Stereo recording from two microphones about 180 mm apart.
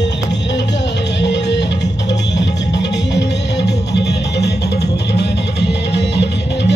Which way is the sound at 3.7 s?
70° left (ahead or behind).